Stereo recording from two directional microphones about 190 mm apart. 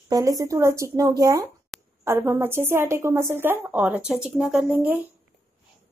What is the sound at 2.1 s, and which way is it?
A woman's voice, 15° right (ahead or behind).